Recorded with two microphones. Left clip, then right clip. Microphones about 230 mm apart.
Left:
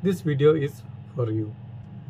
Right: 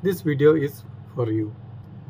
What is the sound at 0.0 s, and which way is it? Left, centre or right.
Speech, centre.